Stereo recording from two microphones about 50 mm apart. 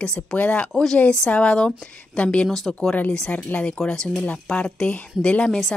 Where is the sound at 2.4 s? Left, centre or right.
Centre.